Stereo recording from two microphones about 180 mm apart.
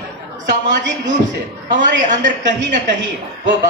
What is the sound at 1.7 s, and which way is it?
A woman's voice, 45° right (ahead or behind).